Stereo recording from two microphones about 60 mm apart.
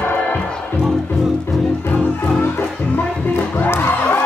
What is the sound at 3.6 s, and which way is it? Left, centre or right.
Music, left.